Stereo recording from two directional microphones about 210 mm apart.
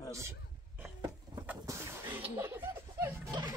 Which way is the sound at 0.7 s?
10° right (ahead or behind).